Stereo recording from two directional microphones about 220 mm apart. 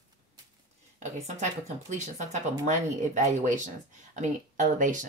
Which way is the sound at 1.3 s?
30° right (ahead or behind).